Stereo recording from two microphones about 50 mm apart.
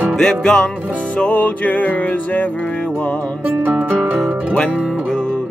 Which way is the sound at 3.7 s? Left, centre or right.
Right.